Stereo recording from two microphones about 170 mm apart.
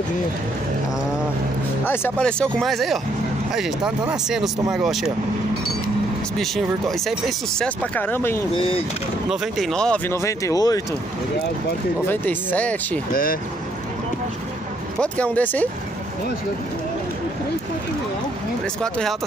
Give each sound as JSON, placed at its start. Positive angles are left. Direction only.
{"t": 1.9, "sound": "speech", "side_deg": 10}
{"t": 6.3, "sound": "speech", "side_deg": 0}
{"t": 9.3, "sound": "speech", "side_deg": 0}
{"t": 12.1, "sound": "speech", "side_deg": 10}
{"t": 13.1, "sound": "speech", "side_deg": 55}
{"t": 15.0, "sound": "speech", "side_deg": 5}
{"t": 18.8, "sound": "speech", "side_deg": 5}